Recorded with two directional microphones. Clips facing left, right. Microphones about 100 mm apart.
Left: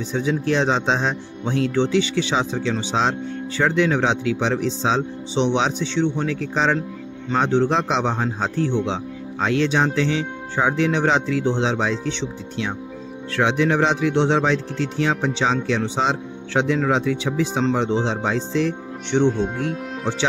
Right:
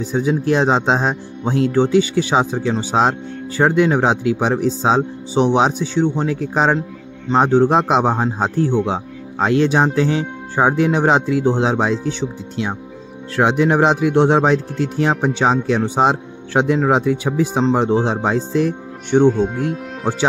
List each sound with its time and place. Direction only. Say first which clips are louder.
0.0 s a man's voice: right 4 dB; 35° right (ahead or behind)
17.8 s speech: right 4 dB; 45° right (ahead or behind)
19.2 s speech: right 5 dB; 5° right (ahead or behind)
19.7 s music: right 3 dB; centre (ahead or behind)